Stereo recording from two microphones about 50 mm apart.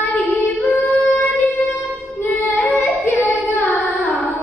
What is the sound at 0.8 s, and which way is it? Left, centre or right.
Singing, left.